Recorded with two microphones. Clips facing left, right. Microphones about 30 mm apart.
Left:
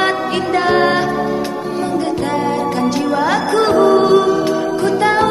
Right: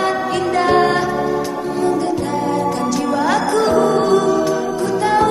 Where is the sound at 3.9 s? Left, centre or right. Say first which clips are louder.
Left 3 dB; left.